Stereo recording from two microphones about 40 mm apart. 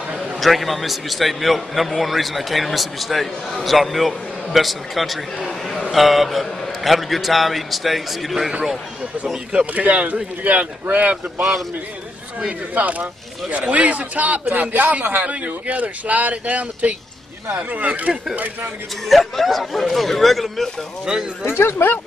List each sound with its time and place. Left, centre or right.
0.4 s a man's voice: centre
9.8 s speech: right
12.7 s speech: right
19.0 s a man's voice: centre
21.0 s speech: centre
21.5 s speech: left